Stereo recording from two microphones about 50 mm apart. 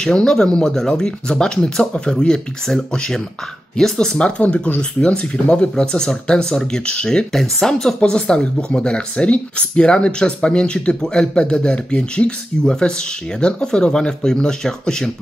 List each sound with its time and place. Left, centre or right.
0.0 s speech: centre
4.4 s speech: left; by 15.0 s centre